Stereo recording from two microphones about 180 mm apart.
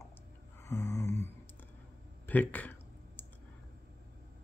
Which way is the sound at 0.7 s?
15° left (ahead or behind).